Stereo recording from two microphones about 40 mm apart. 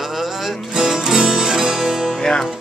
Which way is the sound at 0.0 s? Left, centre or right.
Centre.